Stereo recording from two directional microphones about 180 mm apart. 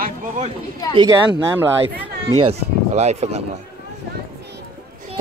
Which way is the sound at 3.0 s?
35° right (ahead or behind).